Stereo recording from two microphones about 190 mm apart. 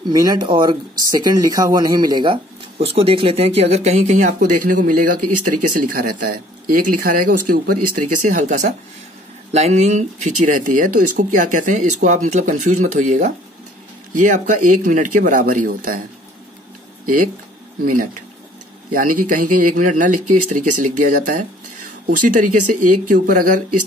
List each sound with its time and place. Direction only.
0.0 s speech: 20° right (ahead or behind); by 16.0 s 45° right (ahead or behind)
17.0 s speech: 45° right (ahead or behind)
18.9 s speech: 45° right (ahead or behind)